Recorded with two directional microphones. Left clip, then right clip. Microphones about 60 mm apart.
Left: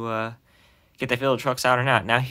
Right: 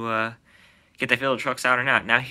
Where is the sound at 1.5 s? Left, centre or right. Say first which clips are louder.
Left 2 dB; left.